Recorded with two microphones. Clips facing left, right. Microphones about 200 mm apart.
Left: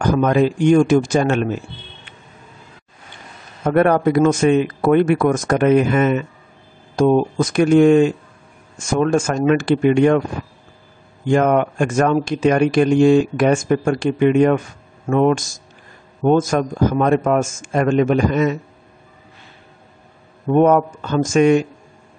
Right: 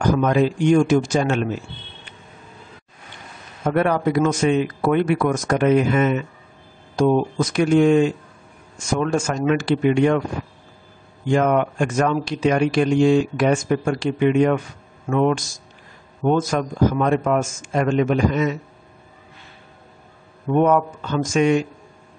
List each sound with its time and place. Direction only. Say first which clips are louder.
0.0 s speech: left 2 dB; 50° left (ahead or behind)
3.6 s speech: left 4 dB; 50° left (ahead or behind)
11.2 s speech: left 3 dB; 50° left (ahead or behind)
20.4 s speech: left 4 dB; 45° left (ahead or behind)